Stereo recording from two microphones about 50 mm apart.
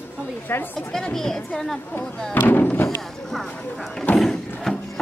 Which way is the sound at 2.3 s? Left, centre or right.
Left.